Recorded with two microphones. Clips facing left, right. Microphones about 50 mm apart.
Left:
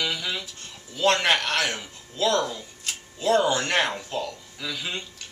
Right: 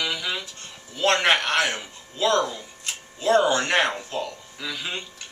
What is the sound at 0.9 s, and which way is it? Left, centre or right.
Speech, centre.